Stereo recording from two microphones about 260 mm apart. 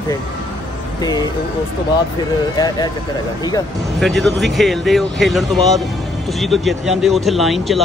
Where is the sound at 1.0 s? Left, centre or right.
Centre.